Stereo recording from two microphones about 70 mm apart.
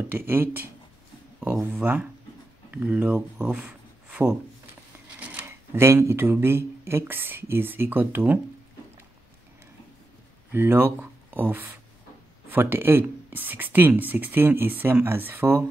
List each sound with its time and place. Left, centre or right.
0.1 s speech: right
1.7 s speech: right
5.8 s speech: right
10.5 s speech: right